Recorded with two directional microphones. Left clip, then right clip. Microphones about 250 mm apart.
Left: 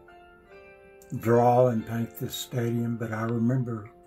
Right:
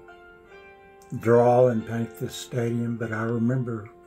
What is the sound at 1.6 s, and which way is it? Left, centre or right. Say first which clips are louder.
Speech: right 3 dB; centre.